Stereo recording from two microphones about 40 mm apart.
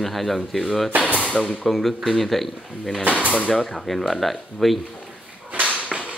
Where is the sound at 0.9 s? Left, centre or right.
Right.